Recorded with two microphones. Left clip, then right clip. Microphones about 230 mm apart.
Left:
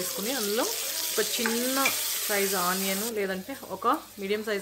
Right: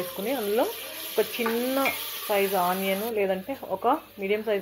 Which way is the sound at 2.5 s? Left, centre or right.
Centre.